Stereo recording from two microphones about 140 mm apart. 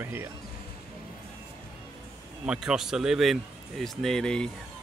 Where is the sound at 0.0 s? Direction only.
15° right (ahead or behind).